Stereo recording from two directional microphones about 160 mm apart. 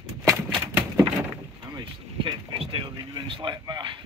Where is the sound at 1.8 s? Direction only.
30° right (ahead or behind).